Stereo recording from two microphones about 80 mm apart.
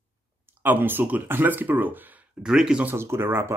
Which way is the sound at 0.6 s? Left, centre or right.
Right.